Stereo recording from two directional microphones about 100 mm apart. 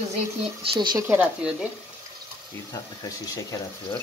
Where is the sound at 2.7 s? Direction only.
35° left (ahead or behind).